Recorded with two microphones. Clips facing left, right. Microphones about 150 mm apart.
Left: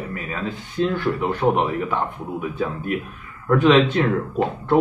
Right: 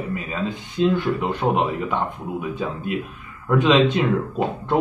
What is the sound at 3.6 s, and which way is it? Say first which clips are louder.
Speech: left 1 dB; 15° right (ahead or behind).